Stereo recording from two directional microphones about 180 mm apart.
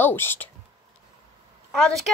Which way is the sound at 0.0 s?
10° left (ahead or behind).